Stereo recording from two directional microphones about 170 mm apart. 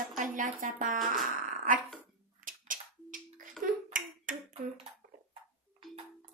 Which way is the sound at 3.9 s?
50° right (ahead or behind).